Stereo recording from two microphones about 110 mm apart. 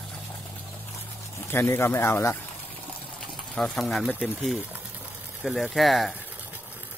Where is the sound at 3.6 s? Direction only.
5° left (ahead or behind).